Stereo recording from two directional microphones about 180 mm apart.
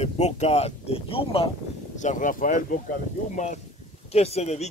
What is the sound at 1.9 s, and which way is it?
Speech, 45° left (ahead or behind).